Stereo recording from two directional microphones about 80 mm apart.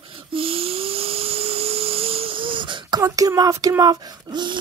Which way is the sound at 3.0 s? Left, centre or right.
Right.